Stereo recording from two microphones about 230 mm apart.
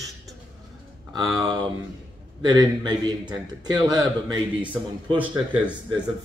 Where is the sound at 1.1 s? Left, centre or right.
Centre.